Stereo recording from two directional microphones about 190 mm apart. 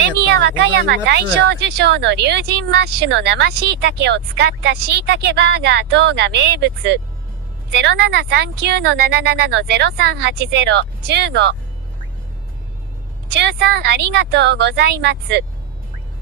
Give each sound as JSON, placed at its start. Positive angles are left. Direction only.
{"t": 0.2, "sound": "a woman's voice", "side_deg": -65}
{"t": 13.3, "sound": "a woman's voice", "side_deg": -60}